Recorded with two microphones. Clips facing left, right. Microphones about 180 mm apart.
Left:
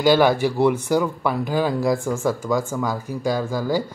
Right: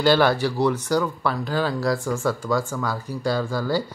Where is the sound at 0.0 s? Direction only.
15° left (ahead or behind).